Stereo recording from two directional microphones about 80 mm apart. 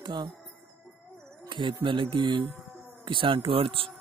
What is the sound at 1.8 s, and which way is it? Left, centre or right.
Speech, right.